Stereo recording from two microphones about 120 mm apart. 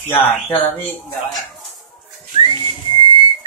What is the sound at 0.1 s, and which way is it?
Speech, 15° left (ahead or behind).